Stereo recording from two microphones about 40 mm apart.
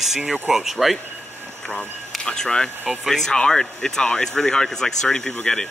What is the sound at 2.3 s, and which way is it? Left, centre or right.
Speech, centre.